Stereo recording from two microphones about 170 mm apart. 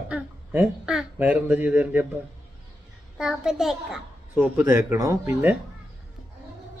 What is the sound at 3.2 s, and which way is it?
A child's voice, 5° right (ahead or behind).